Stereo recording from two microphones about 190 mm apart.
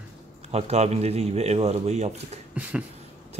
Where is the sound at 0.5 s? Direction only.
35° right (ahead or behind).